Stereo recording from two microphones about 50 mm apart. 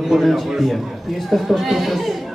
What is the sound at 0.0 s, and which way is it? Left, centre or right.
A man's voice, centre.